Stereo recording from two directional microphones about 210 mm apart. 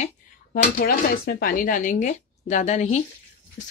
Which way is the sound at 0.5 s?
45° left (ahead or behind).